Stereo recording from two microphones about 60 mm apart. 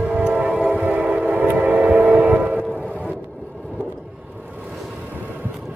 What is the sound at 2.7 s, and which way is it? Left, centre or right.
Music, right.